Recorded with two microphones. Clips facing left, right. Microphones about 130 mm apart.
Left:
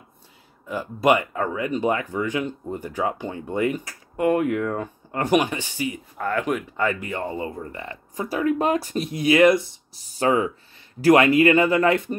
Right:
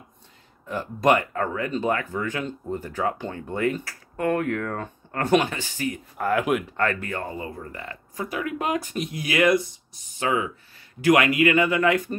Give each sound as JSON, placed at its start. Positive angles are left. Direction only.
{"t": 0.7, "sound": "speech", "side_deg": 10}
{"t": 6.1, "sound": "speech", "side_deg": -5}
{"t": 6.9, "sound": "speech", "side_deg": 15}
{"t": 10.1, "sound": "speech", "side_deg": 35}